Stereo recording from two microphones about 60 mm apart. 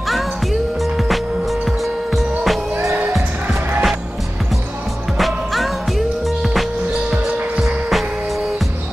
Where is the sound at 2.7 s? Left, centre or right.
Right.